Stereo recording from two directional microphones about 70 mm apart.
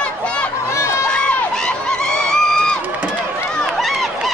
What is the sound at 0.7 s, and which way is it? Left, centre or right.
Crowd, left.